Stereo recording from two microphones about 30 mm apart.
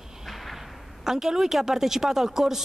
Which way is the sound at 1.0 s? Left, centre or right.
Centre.